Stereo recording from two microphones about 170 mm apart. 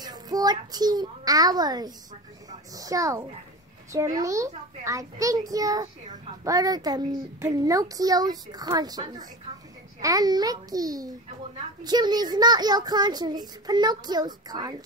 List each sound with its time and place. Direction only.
0.0 s a child's voice: 25° right (ahead or behind)